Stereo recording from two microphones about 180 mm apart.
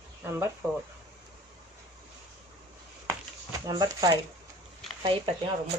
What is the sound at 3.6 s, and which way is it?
Speech, 20° right (ahead or behind).